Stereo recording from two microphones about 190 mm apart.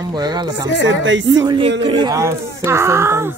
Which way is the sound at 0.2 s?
20° right (ahead or behind).